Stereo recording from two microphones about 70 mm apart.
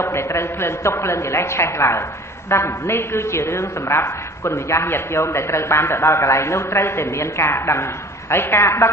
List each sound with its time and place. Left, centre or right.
0.0 s a woman's voice: left